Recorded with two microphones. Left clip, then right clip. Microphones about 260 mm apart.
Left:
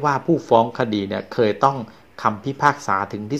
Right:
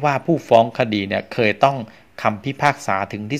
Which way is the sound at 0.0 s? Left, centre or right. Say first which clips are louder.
Right 1 dB; right.